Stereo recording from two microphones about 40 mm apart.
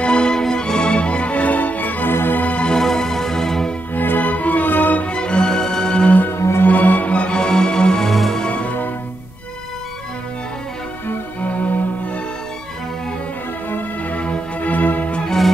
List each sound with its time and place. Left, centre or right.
0.0 s music: left
2.8 s music: centre
3.9 s music: left
5.0 s music: left
6.3 s music: left
6.7 s music: left
7.3 s music: left
8.1 s music: centre
8.5 s music: left
11.4 s music: left
14.1 s music: left
15.2 s music: centre